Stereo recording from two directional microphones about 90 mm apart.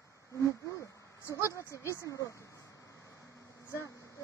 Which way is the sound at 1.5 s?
35° left (ahead or behind).